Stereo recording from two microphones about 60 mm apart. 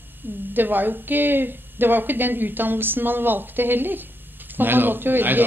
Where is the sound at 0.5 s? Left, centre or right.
Right.